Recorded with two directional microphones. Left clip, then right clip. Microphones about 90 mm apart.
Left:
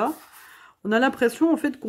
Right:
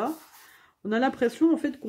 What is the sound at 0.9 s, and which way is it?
Speech, 50° left (ahead or behind).